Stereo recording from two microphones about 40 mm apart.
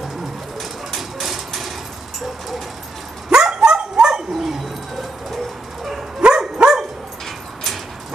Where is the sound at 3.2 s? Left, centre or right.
Right.